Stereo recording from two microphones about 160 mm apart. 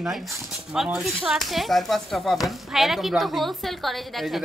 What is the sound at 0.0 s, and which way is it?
Speech, centre (ahead or behind).